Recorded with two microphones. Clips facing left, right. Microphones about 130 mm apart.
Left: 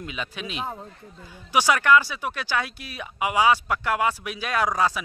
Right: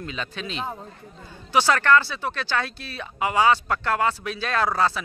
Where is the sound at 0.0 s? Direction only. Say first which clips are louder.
Right 1 dB; 10° left (ahead or behind).